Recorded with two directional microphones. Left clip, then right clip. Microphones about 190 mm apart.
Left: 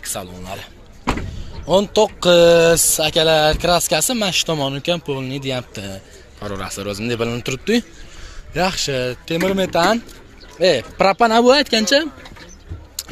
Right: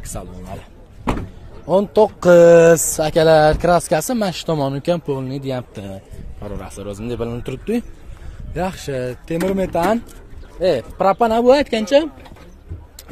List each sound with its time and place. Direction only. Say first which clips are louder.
0.1 s speech: left 1 dB; 5° right (ahead or behind)
1.7 s speech: right 1 dB; 20° right (ahead or behind)
6.4 s speech: left 4 dB; centre (ahead or behind)
10.6 s speech: left 2 dB; 10° left (ahead or behind)
11.4 s speech: even; centre (ahead or behind)